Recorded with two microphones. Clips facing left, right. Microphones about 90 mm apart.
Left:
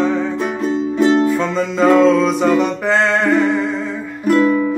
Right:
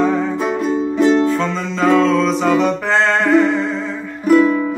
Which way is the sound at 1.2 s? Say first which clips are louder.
Left 1 dB; 10° left (ahead or behind).